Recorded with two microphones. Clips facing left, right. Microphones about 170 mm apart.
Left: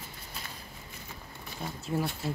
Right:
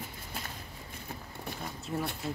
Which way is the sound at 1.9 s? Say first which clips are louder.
Left 4 dB; centre (ahead or behind).